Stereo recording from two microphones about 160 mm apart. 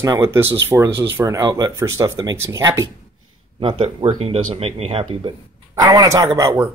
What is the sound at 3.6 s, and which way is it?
Speech, 30° right (ahead or behind).